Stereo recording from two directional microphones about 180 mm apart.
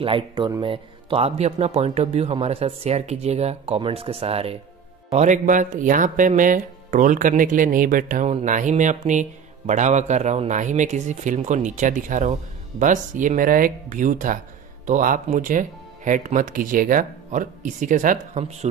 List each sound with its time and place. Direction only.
0.0 s speech: 25° right (ahead or behind)